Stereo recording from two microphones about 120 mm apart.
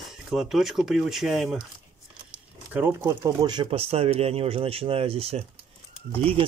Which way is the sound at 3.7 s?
55° right (ahead or behind).